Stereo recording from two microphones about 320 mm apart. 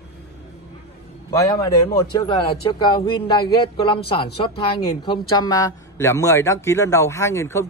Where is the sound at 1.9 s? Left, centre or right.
Centre.